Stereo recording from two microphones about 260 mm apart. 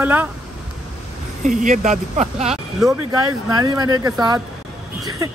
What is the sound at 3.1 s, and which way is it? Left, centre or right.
Speech, centre.